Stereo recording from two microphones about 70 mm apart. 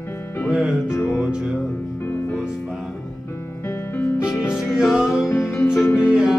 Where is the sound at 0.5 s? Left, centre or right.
Centre.